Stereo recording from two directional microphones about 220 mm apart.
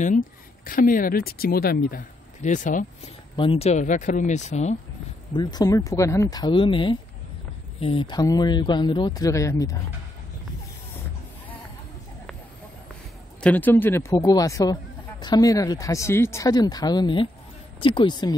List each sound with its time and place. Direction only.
0.7 s speech: 40° left (ahead or behind)
3.3 s speech: 25° left (ahead or behind)
5.3 s a man's voice: 20° left (ahead or behind)
13.4 s a man's voice: 5° left (ahead or behind)